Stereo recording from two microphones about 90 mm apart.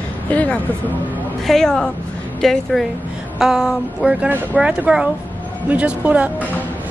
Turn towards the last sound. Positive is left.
turn(degrees=-15)  # may be behind; listen again after turning